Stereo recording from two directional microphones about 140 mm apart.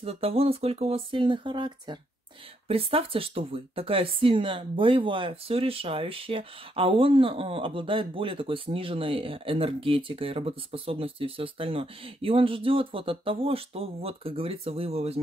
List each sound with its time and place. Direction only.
0.0 s speech: 45° right (ahead or behind)